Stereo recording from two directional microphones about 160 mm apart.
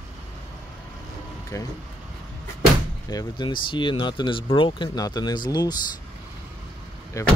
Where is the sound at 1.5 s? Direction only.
20° left (ahead or behind).